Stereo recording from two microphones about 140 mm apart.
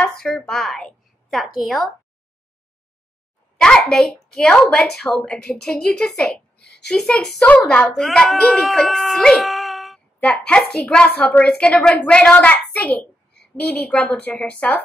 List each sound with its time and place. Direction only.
0.0 s a woman's voice: 5° left (ahead or behind)
3.5 s a woman's voice: 5° left (ahead or behind)